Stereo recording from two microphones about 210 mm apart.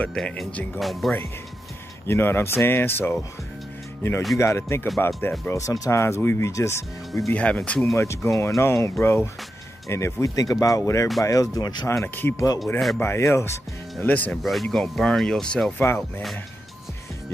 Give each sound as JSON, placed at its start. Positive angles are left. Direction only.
{"t": 0.0, "sound": "speech", "side_deg": 5}
{"t": 2.0, "sound": "speech", "side_deg": 10}
{"t": 4.4, "sound": "speech", "side_deg": 15}